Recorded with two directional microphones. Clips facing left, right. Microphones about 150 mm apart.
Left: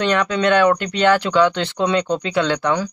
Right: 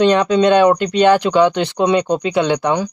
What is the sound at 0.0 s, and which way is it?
Speech, 20° right (ahead or behind).